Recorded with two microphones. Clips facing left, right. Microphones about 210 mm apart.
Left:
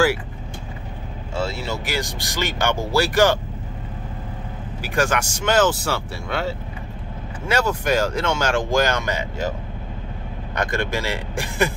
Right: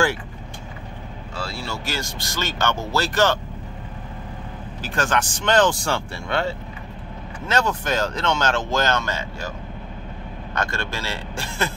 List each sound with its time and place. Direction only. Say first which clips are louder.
1.3 s speech: left 5 dB; 20° left (ahead or behind)
4.8 s speech: left 2 dB; 10° left (ahead or behind)
10.5 s speech: left 4 dB; 15° left (ahead or behind)